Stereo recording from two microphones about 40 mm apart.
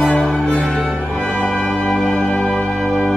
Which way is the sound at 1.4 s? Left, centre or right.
Left.